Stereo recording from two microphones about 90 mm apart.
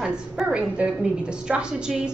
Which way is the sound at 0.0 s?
10° right (ahead or behind).